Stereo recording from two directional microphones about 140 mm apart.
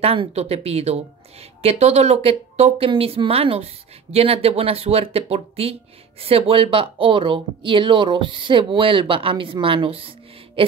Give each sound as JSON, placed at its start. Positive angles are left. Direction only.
{"t": 0.0, "sound": "a woman's voice", "side_deg": -45}